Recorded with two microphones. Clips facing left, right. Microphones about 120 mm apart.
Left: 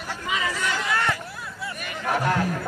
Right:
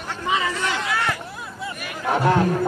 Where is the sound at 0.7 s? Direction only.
Centre (ahead or behind).